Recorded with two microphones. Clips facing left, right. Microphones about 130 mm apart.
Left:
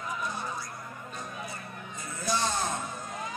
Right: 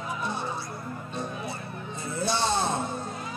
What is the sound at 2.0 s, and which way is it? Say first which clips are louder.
Music: right 3 dB; 30° right (ahead or behind).